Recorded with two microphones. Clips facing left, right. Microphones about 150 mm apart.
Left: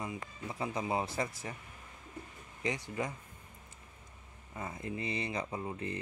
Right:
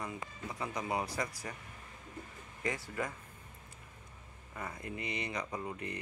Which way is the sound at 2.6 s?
20° left (ahead or behind).